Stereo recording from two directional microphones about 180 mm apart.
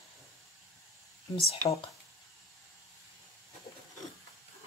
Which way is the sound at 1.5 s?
35° left (ahead or behind).